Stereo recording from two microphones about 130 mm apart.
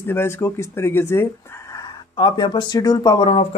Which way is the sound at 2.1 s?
40° left (ahead or behind).